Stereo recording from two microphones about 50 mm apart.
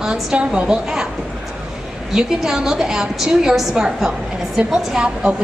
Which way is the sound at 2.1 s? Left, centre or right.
Centre.